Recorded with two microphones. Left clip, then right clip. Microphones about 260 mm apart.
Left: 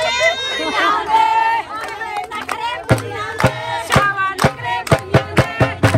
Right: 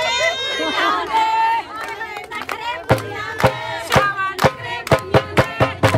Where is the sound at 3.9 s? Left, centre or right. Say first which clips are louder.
Left 1 dB; right.